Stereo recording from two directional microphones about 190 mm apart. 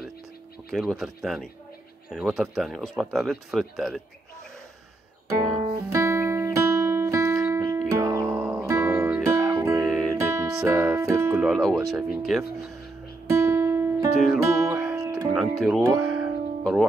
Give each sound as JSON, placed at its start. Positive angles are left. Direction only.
{"t": 0.7, "sound": "speech", "side_deg": 0}
{"t": 5.4, "sound": "music", "side_deg": -15}
{"t": 8.3, "sound": "music", "side_deg": -5}
{"t": 8.6, "sound": "music", "side_deg": -15}
{"t": 9.8, "sound": "music", "side_deg": 0}
{"t": 10.2, "sound": "music", "side_deg": -15}
{"t": 11.4, "sound": "speech", "side_deg": 0}
{"t": 13.3, "sound": "music", "side_deg": -15}
{"t": 15.3, "sound": "speech", "side_deg": 0}
{"t": 16.0, "sound": "music", "side_deg": -5}